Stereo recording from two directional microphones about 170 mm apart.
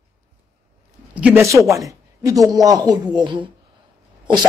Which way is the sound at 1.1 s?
10° right (ahead or behind).